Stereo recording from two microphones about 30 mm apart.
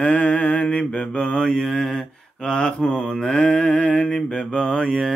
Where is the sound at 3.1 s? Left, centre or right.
Left.